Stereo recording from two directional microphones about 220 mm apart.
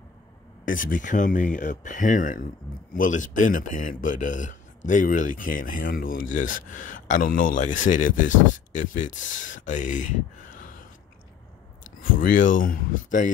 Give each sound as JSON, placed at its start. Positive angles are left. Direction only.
{"t": 0.7, "sound": "speech", "side_deg": 40}
{"t": 12.0, "sound": "speech", "side_deg": 40}